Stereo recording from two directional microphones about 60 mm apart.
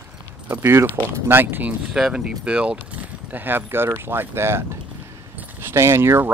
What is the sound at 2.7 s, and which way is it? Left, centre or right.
Speech, right.